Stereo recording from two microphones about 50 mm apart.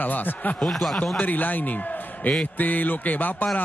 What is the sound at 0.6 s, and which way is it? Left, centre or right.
Speech, centre.